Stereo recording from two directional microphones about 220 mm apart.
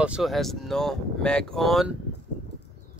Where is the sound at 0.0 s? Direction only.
5° right (ahead or behind).